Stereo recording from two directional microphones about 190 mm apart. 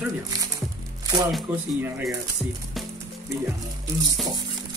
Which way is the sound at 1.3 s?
Centre (ahead or behind).